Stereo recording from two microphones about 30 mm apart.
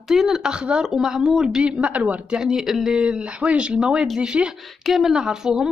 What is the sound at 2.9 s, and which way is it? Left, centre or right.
Speech, right.